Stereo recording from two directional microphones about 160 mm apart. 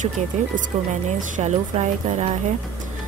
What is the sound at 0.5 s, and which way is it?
Speech, 55° right (ahead or behind).